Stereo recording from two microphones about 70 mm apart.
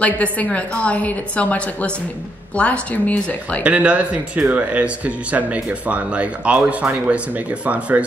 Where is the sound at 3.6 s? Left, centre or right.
Centre.